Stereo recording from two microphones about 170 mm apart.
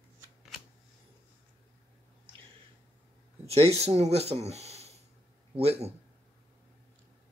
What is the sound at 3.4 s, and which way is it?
Speech, 35° right (ahead or behind).